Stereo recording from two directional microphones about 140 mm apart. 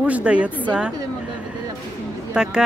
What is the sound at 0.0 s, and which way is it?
Speech, 10° right (ahead or behind).